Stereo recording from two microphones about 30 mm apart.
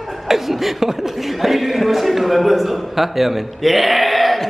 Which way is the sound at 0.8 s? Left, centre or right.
Centre.